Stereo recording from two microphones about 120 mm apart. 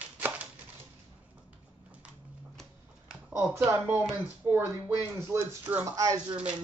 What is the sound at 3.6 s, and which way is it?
Speech, 15° right (ahead or behind).